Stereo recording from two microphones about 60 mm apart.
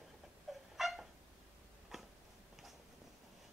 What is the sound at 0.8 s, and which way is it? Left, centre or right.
Cat, centre.